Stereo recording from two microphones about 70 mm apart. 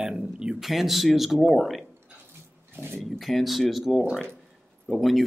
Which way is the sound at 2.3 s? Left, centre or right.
Right.